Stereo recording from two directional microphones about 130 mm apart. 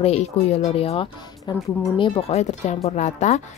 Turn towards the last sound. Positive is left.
turn(degrees=65)  # may be behind; listen again after turning